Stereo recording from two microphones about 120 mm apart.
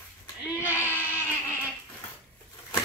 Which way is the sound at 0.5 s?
20° left (ahead or behind).